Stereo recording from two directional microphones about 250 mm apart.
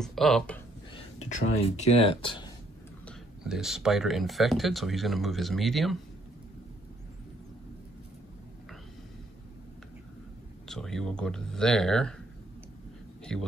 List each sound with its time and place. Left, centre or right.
0.0 s speech: centre
0.9 s a sound: left
1.6 s speech: left
3.1 s speech: centre
10.7 s speech: centre
13.2 s a man's voice: centre